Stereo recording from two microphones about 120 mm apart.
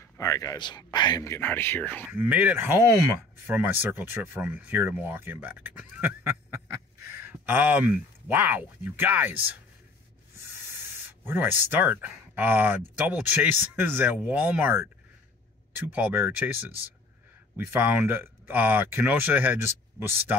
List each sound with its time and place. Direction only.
0.2 s speech: 30° left (ahead or behind)
1.2 s speech: 20° left (ahead or behind)
2.1 s speech: 15° right (ahead or behind)